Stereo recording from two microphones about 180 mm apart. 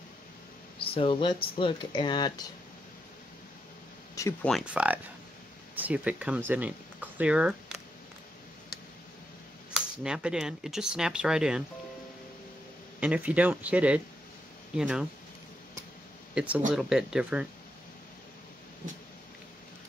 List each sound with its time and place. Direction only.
0.9 s speech: 30° left (ahead or behind)
4.1 s speech: 15° left (ahead or behind)
4.5 s speech: 5° right (ahead or behind)
9.8 s speech: 5° right (ahead or behind)
13.0 s speech: 10° right (ahead or behind)
16.3 s speech: 5° right (ahead or behind)